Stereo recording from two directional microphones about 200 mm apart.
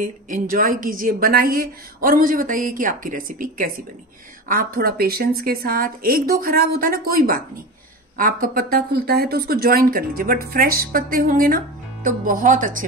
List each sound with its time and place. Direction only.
0.0 s speech: 40° right (ahead or behind)